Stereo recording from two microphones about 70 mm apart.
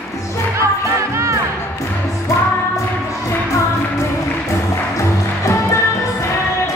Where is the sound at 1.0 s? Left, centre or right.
Right.